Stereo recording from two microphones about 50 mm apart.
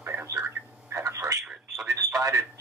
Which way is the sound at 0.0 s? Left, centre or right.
Right.